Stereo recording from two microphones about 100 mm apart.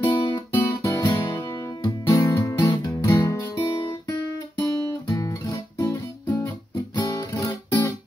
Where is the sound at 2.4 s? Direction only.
30° left (ahead or behind).